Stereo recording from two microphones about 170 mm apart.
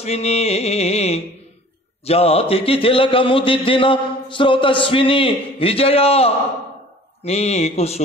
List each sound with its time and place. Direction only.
0.0 s a man's voice: 40° left (ahead or behind)